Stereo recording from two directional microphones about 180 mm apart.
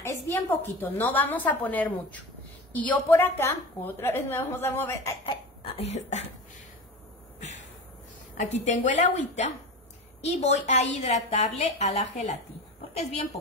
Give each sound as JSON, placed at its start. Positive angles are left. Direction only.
{"t": 0.0, "sound": "a woman's voice", "side_deg": 15}
{"t": 5.2, "sound": "cough", "side_deg": 35}
{"t": 8.4, "sound": "a woman's voice", "side_deg": 40}